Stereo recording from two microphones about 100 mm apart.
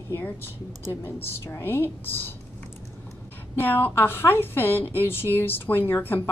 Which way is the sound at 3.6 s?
20° left (ahead or behind).